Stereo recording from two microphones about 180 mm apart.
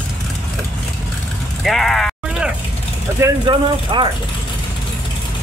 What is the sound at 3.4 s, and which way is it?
Speech, 25° right (ahead or behind).